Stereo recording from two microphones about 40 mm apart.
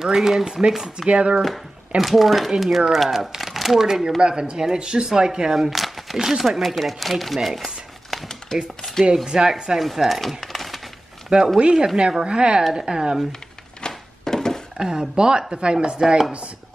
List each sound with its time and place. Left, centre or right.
0.0 s speech: centre
1.0 s speech: right
2.0 s speech: centre
6.6 s speech: centre
8.5 s speech: centre
9.0 s speech: centre
10.0 s speech: centre
10.4 s a sound: centre
11.2 s speech: centre
13.8 s thunk: centre
14.8 s speech: centre